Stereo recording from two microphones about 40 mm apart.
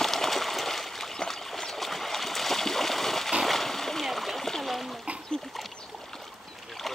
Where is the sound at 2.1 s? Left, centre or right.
Centre.